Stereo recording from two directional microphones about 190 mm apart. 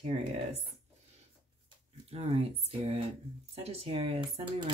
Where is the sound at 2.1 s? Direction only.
30° right (ahead or behind).